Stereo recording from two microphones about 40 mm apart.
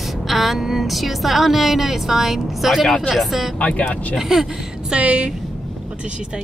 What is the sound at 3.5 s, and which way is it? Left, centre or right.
Speech, left.